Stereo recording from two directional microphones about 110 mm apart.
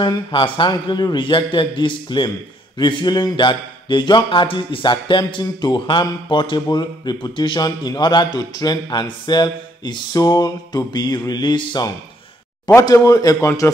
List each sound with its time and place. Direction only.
0.3 s speech: 50° left (ahead or behind)
10.2 s music: 30° left (ahead or behind)
12.7 s music: 30° left (ahead or behind)